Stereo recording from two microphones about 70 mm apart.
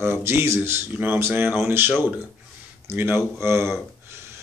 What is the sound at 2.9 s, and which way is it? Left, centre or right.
Speech, right.